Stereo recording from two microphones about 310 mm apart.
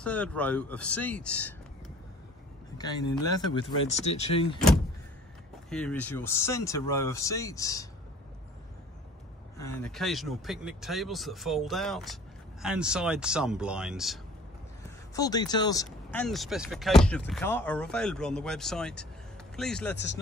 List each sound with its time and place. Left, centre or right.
0.0 s speech: centre
2.8 s speech: centre
5.7 s speech: centre
9.6 s speech: centre
15.1 s speech: centre